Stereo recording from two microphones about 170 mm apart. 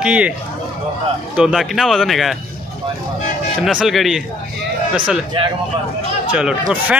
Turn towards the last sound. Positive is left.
turn(degrees=-5)  # may be behind; listen again after turning